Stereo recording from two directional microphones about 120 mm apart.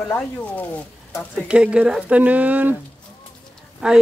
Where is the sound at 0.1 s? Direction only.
15° left (ahead or behind).